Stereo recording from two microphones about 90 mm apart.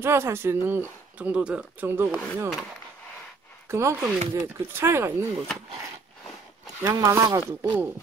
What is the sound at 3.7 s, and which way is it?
Speech, 30° right (ahead or behind).